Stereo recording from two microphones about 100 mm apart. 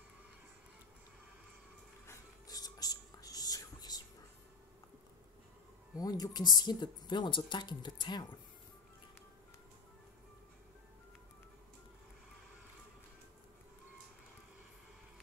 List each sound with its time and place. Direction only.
2.0 s whispering: 40° left (ahead or behind)
5.9 s speech: 40° left (ahead or behind)